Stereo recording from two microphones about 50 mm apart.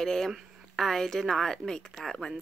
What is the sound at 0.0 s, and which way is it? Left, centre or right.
Speech, centre.